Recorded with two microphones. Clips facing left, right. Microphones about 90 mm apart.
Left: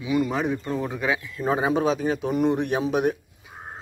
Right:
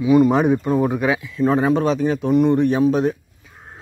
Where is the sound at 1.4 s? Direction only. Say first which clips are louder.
Right 6 dB; 5° left (ahead or behind).